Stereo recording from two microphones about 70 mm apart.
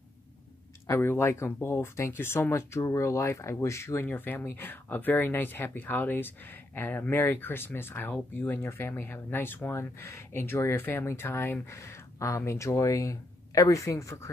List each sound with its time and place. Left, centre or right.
0.8 s speech: left
4.1 s speech: left